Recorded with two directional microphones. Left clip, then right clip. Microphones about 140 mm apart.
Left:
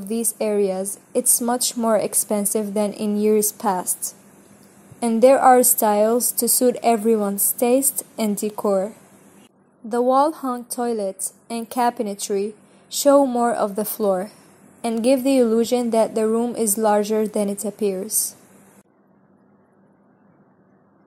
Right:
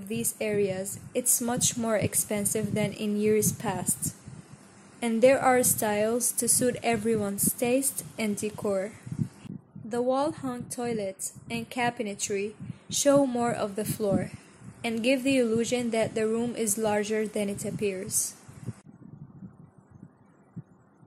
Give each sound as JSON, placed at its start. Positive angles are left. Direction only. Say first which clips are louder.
{"t": 0.1, "sound": "a woman's voice", "louder": "left 8 dB", "side_deg": 20}
{"t": 10.3, "sound": "a woman's voice", "louder": "left 9 dB", "side_deg": -10}
{"t": 10.7, "sound": "a woman's voice", "louder": "left 7 dB", "side_deg": 20}
{"t": 13.9, "sound": "a woman's voice", "louder": "left 7 dB", "side_deg": 20}